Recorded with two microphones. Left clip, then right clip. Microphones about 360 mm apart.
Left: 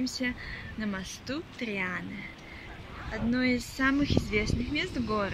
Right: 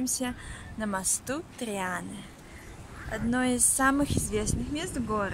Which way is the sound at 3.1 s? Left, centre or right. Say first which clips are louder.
Right 1 dB; centre.